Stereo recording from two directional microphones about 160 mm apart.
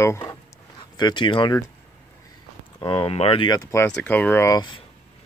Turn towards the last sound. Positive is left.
turn(degrees=25)  # may be behind; listen again after turning